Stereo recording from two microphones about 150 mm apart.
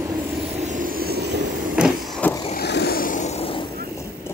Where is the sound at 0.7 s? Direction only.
65° right (ahead or behind); by 1.3 s 90° right.